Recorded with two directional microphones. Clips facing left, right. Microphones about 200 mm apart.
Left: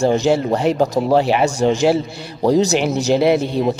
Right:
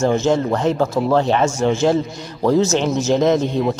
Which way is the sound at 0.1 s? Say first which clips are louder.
Left 1 dB; 15° left (ahead or behind).